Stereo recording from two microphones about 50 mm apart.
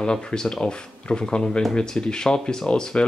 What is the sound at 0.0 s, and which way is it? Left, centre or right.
Speech, centre.